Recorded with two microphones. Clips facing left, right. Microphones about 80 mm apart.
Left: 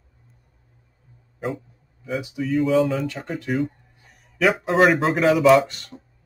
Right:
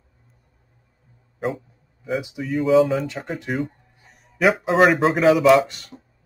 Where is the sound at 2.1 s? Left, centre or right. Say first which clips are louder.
Right 1 dB; centre.